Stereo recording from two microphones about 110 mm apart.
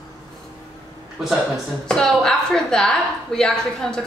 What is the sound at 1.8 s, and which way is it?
A woman's voice, 5° left (ahead or behind).